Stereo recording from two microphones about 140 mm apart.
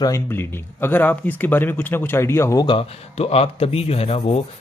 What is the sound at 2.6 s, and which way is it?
Speech, 40° left (ahead or behind).